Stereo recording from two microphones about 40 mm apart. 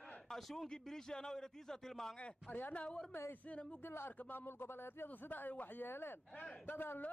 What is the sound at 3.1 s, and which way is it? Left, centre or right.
Speech, left.